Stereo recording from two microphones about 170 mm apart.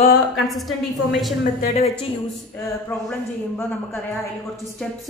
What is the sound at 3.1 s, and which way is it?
Speech, 15° left (ahead or behind).